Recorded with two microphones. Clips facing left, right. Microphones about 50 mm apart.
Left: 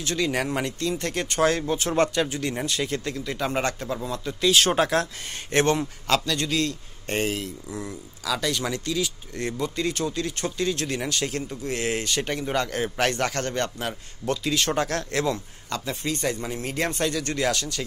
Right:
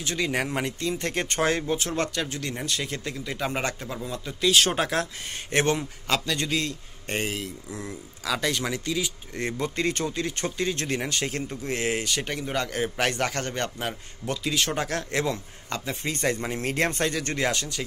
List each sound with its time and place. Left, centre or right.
0.0 s a man's voice: centre
1.1 s a man's voice: right
1.4 s speech: centre
1.9 s a man's voice: centre
6.3 s speech: right
7.1 s a man's voice: centre
8.3 s speech: right
9.6 s a man's voice: right
10.0 s speech: right
12.0 s a man's voice: centre; by 16.2 s right
16.2 s a man's voice: right
17.2 s speech: right